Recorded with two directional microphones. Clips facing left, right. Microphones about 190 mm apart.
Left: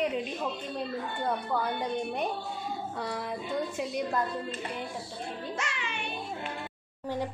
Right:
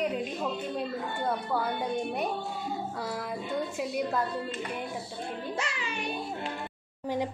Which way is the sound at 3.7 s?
5° right (ahead or behind).